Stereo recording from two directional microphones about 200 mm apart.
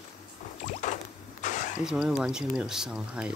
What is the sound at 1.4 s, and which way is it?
Vehicle, 40° left (ahead or behind).